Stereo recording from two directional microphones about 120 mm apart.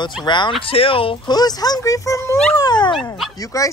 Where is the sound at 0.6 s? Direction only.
50° left (ahead or behind).